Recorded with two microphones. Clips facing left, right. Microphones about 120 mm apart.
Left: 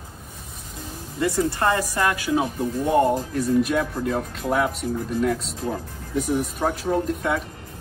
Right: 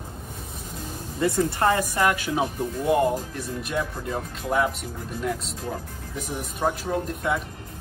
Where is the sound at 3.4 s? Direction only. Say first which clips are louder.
Left 8 dB; centre (ahead or behind).